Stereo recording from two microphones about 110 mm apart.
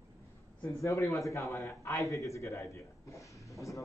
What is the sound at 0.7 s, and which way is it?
A man's voice, 30° left (ahead or behind).